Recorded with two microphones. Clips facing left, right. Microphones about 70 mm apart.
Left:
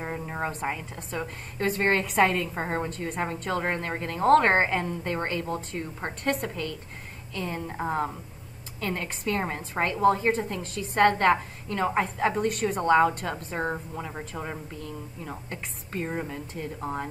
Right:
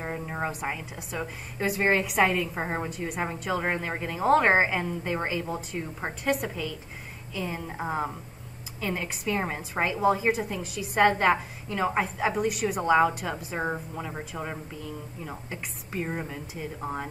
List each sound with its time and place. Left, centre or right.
0.0 s a woman's voice: centre